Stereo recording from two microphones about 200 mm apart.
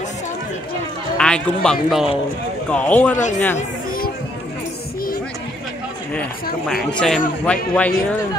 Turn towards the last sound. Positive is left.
turn(degrees=5)  # may be behind; listen again after turning